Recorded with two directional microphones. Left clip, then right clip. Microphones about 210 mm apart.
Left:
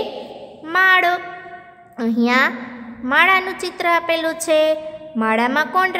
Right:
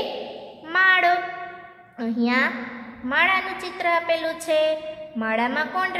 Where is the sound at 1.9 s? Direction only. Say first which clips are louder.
Left 6 dB; 30° left (ahead or behind).